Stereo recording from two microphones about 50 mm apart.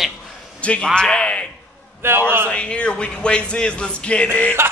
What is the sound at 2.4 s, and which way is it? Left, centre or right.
Speech, left.